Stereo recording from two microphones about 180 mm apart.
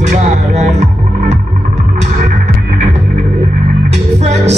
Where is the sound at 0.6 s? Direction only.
40° right (ahead or behind).